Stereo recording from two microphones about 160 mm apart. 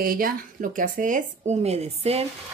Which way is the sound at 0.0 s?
65° right (ahead or behind).